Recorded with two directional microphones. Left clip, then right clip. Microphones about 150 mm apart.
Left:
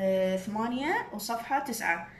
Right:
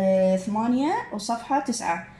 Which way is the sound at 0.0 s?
35° right (ahead or behind).